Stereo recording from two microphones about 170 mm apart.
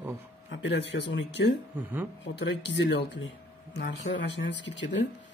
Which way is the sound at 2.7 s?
90° left.